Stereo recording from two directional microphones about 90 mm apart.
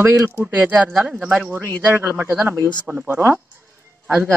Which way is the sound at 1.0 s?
15° right (ahead or behind).